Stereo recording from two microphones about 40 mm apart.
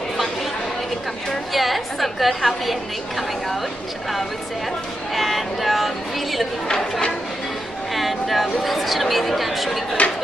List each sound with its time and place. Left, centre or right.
1.5 s a woman's voice: centre
5.1 s a woman's voice: centre
6.7 s speech: centre
7.9 s a sound: centre
8.6 s a woman's voice: centre
10.0 s speech: left